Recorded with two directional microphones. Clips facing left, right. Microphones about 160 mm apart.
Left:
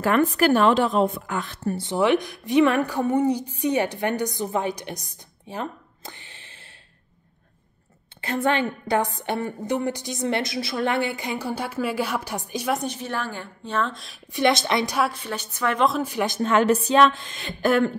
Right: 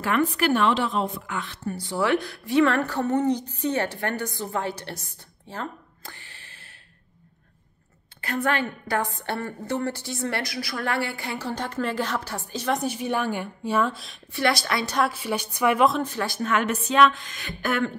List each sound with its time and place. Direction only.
0.0 s a woman's voice: 40° left (ahead or behind)
1.8 s a woman's voice: 20° left (ahead or behind)
8.2 s a woman's voice: 25° left (ahead or behind)
12.7 s a woman's voice: 10° right (ahead or behind)
14.3 s a woman's voice: 20° left (ahead or behind)
15.0 s a woman's voice: 5° right (ahead or behind)
15.9 s a woman's voice: 10° left (ahead or behind)
16.3 s a woman's voice: 30° left (ahead or behind)